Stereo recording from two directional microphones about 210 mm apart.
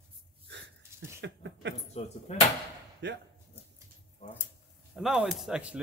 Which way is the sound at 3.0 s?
55° right (ahead or behind).